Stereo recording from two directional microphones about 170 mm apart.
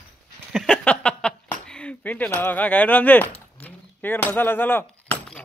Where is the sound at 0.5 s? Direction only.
5° left (ahead or behind).